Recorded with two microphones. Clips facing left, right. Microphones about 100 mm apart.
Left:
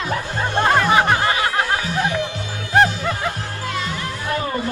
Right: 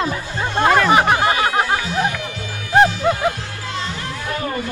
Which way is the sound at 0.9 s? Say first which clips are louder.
Right 2 dB; 15° right (ahead or behind).